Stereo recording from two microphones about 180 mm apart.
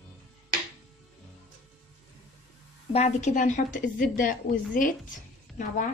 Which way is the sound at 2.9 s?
40° left (ahead or behind).